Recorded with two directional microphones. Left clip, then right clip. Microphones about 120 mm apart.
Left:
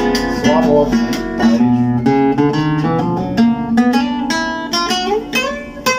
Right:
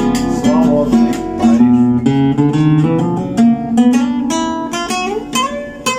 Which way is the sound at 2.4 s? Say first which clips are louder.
Right 1 dB; 15° right (ahead or behind).